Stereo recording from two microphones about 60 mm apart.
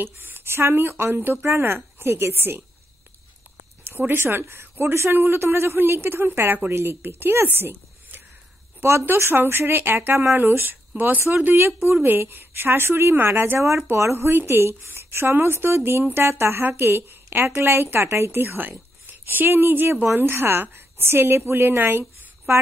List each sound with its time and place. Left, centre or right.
0.0 s a woman's voice: right
3.8 s a woman's voice: right